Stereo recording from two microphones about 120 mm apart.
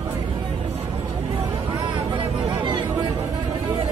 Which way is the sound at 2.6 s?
40° right (ahead or behind).